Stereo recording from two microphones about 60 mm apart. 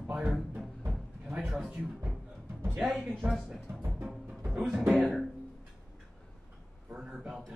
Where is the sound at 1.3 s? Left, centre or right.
Right.